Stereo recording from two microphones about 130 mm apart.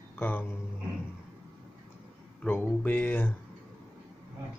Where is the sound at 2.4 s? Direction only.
15° left (ahead or behind).